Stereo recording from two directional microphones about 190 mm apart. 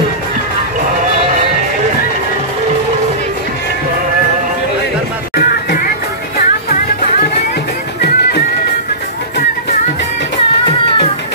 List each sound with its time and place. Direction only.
5.3 s music: 50° left (ahead or behind)